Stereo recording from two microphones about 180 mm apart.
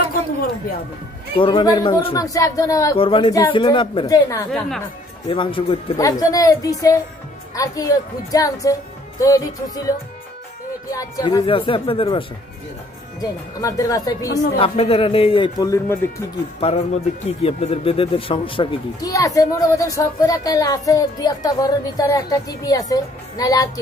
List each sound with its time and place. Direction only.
1.3 s a man's voice: 30° left (ahead or behind)
3.0 s a woman's voice: 30° left (ahead or behind)
4.5 s speech: centre (ahead or behind)
5.3 s a man's voice: 30° left (ahead or behind)
10.9 s a man's voice: 20° left (ahead or behind)
13.2 s a man's voice: 20° left (ahead or behind)
14.6 s a man's voice: 30° left (ahead or behind)
16.5 s a man's voice: 35° left (ahead or behind)